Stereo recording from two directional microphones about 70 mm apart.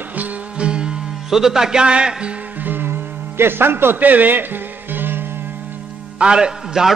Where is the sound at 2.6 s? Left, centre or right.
Right.